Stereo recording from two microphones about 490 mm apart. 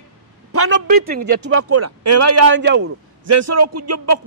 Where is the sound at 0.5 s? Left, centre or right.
Right.